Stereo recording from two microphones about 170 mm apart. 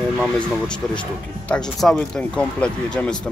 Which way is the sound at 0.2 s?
5° left (ahead or behind).